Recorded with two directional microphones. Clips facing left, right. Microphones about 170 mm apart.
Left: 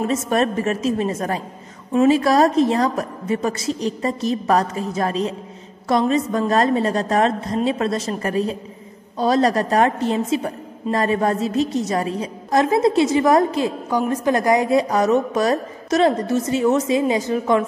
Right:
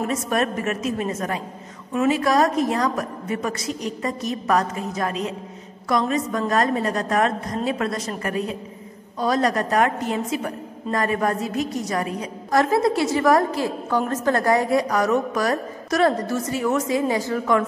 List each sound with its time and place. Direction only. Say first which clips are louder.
0.0 s a woman's voice: left 3 dB; 30° left (ahead or behind)